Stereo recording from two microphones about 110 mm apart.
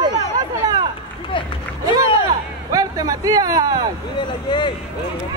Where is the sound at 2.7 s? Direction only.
35° right (ahead or behind).